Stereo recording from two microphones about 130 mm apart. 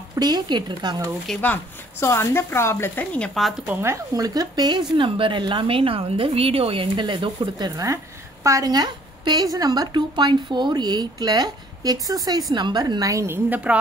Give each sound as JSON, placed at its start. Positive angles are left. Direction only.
{"t": 0.1, "sound": "a woman's voice", "side_deg": -30}
{"t": 1.2, "sound": "speech", "side_deg": 10}
{"t": 3.3, "sound": "a woman's voice", "side_deg": 0}
{"t": 3.6, "sound": "a woman's voice", "side_deg": -20}
{"t": 13.7, "sound": "speech", "side_deg": -10}